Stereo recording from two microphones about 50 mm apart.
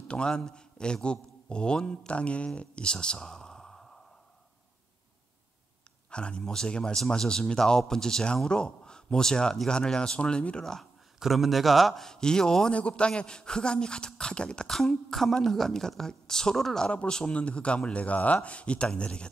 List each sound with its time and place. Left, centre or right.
0.1 s a man's voice: centre
6.0 s a woman's voice: centre
11.1 s a woman's voice: centre
14.7 s a woman's voice: centre
16.9 s speech: left